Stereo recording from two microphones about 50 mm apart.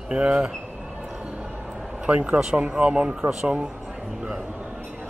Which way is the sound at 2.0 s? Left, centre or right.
Right.